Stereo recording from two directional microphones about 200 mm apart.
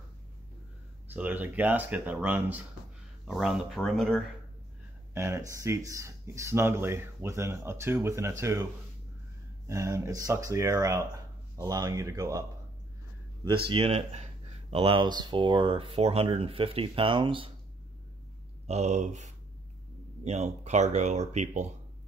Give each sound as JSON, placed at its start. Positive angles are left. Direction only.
{"t": 1.1, "sound": "speech", "side_deg": -10}
{"t": 5.1, "sound": "speech", "side_deg": -15}
{"t": 9.7, "sound": "speech", "side_deg": -15}
{"t": 18.7, "sound": "speech", "side_deg": -35}